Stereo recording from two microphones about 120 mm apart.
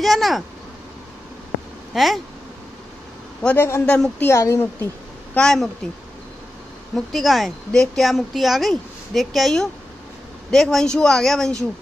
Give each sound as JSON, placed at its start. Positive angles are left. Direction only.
{"t": 0.0, "sound": "speech", "side_deg": 0}
{"t": 1.9, "sound": "speech", "side_deg": -5}
{"t": 3.4, "sound": "speech", "side_deg": 20}
{"t": 5.3, "sound": "speech", "side_deg": 5}
{"t": 7.1, "sound": "speech", "side_deg": 0}